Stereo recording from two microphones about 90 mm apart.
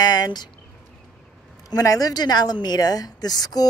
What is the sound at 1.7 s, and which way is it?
A woman's voice, 40° left (ahead or behind).